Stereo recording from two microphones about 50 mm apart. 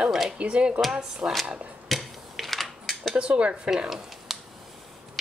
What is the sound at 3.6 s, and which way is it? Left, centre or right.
Speech, centre.